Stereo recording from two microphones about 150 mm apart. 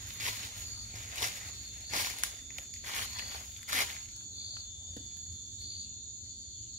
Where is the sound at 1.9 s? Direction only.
55° right (ahead or behind).